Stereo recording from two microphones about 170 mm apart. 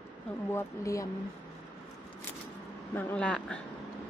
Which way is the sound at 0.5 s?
20° left (ahead or behind).